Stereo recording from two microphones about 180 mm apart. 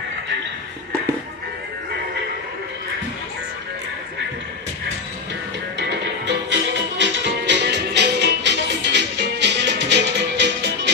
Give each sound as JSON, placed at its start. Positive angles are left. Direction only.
{"t": 5.8, "sound": "music", "side_deg": -80}